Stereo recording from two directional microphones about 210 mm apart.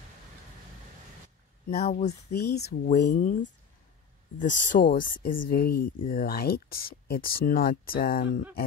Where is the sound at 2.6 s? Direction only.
35° left (ahead or behind).